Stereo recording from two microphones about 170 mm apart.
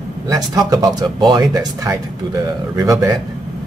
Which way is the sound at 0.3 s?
20° right (ahead or behind).